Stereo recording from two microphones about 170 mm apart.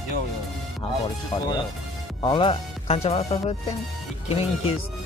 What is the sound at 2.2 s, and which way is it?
Speech, 30° left (ahead or behind).